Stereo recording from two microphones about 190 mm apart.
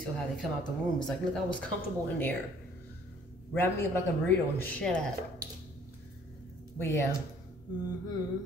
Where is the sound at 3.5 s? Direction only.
10° left (ahead or behind).